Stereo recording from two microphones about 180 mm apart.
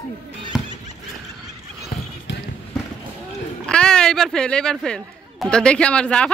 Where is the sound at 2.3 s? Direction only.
80° left.